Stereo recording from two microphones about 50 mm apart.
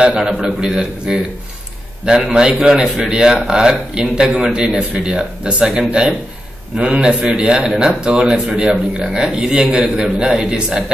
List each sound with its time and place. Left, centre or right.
0.2 s speech: centre
2.3 s a man's voice: centre